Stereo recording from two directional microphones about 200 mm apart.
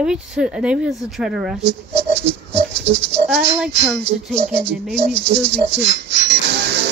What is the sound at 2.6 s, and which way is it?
Speech, 60° right (ahead or behind).